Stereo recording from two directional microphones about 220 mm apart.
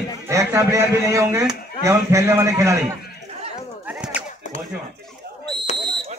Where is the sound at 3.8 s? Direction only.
5° right (ahead or behind).